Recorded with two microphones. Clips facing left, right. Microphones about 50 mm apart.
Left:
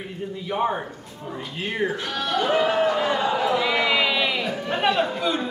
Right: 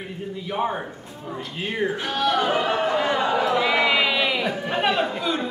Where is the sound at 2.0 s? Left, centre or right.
Right.